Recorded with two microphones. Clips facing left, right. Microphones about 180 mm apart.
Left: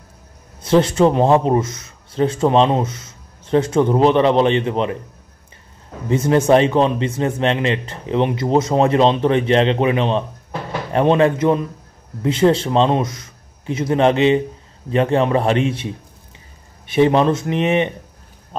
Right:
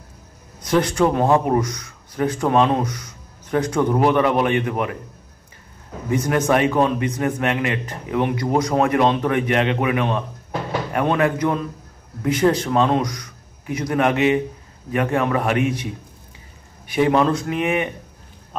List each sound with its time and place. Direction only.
0.6 s a man's voice: 25° left (ahead or behind)
6.0 s a man's voice: 25° left (ahead or behind)